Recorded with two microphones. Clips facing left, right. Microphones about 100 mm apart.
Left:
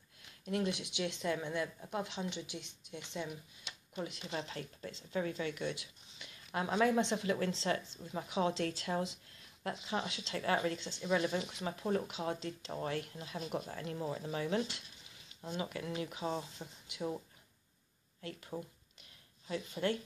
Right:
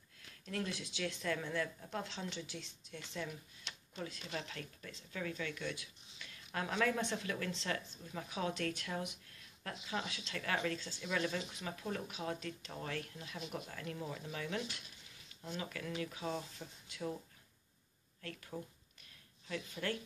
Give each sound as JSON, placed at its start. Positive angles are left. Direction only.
{"t": 0.2, "sound": "speech", "side_deg": 20}
{"t": 11.6, "sound": "speech", "side_deg": 30}
{"t": 18.2, "sound": "speech", "side_deg": 25}